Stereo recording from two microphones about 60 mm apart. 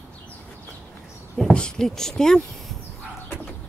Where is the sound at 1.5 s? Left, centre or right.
Centre.